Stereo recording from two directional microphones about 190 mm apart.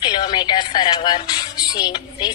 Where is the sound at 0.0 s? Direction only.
20° left (ahead or behind).